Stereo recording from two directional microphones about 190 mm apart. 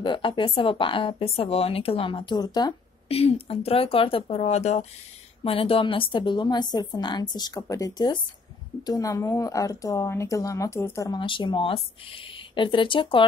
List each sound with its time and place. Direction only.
0.0 s speech: 25° left (ahead or behind)